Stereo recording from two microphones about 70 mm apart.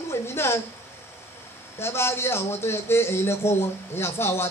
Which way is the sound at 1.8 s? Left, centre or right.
Left.